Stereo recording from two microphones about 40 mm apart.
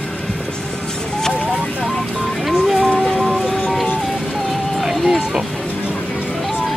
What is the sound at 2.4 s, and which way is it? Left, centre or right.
Music, centre.